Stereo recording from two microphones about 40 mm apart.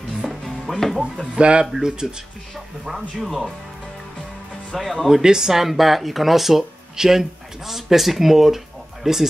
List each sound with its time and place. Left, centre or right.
0.3 s music: centre
1.3 s speech: right; by 3.5 s centre
4.7 s speech: centre
5.1 s speech: centre